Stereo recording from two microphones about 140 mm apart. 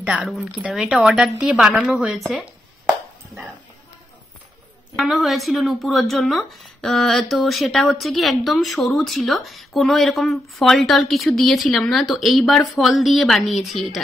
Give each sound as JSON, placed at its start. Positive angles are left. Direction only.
{"t": 0.0, "sound": "a woman's voice", "side_deg": -5}
{"t": 4.9, "sound": "a woman's voice", "side_deg": 0}